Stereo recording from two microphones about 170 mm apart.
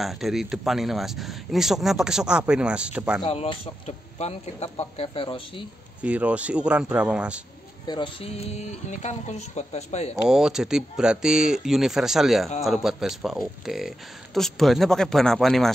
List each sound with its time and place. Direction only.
0.0 s speech: centre (ahead or behind)
3.3 s a man's voice: 35° left (ahead or behind)
6.0 s speech: 5° right (ahead or behind)
7.8 s a man's voice: 25° left (ahead or behind)
10.2 s speech: 5° right (ahead or behind)